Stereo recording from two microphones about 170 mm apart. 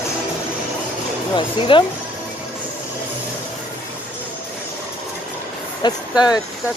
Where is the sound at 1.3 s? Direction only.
30° left (ahead or behind).